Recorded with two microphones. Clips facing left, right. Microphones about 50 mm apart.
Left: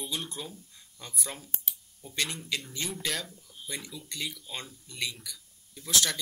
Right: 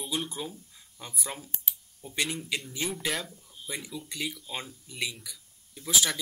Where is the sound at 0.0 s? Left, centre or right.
Centre.